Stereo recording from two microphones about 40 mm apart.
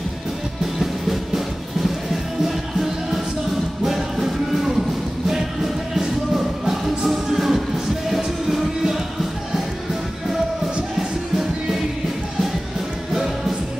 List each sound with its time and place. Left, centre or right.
0.7 s music: centre
2.4 s music: centre
5.9 s music: centre